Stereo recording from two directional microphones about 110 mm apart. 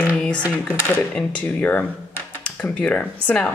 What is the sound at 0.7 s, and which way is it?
A woman's voice, 20° left (ahead or behind).